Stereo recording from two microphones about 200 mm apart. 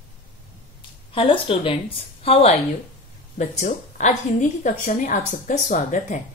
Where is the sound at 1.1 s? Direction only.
25° left (ahead or behind).